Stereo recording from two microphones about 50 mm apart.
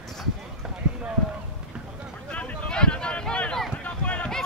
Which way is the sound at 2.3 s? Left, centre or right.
Left.